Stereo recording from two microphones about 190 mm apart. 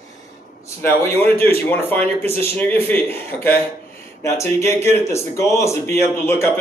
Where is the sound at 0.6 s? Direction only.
15° left (ahead or behind).